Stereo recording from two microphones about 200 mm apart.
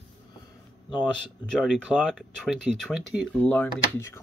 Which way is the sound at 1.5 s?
Centre (ahead or behind).